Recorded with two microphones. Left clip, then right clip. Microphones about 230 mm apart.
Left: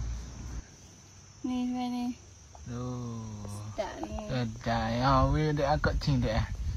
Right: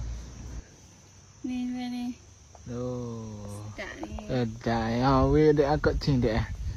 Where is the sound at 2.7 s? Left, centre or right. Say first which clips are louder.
Right 6 dB; right.